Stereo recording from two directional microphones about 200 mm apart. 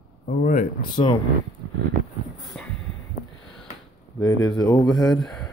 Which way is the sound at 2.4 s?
Centre (ahead or behind).